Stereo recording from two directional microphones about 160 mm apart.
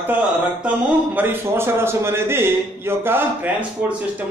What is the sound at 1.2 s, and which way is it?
A man's voice, 15° right (ahead or behind).